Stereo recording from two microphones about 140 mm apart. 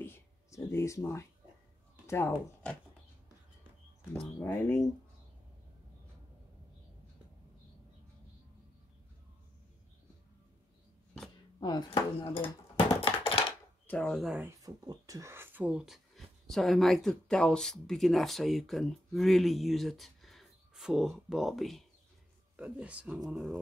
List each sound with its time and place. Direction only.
0.0 s a sound: 15° left (ahead or behind)
2.0 s speech: 15° left (ahead or behind)
4.1 s speech: 15° left (ahead or behind)
11.6 s a sound: 35° left (ahead or behind)
13.8 s speech: 5° left (ahead or behind)
14.6 s speech: 25° right (ahead or behind); by 23.2 s 10° right (ahead or behind)